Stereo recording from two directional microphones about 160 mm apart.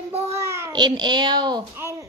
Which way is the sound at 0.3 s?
15° right (ahead or behind).